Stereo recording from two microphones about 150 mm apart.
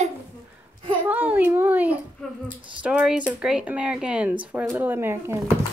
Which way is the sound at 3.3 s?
5° right (ahead or behind).